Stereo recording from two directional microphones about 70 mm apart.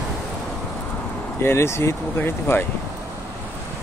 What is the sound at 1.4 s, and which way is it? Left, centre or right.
Speech, left.